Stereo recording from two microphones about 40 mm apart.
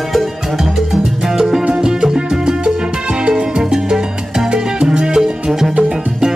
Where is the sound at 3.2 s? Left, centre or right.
Right.